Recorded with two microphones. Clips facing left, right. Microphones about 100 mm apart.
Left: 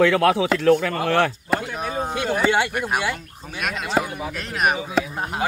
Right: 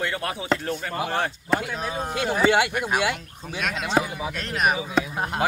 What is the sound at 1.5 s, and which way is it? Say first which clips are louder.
Speech: left 1 dB; 5° left (ahead or behind).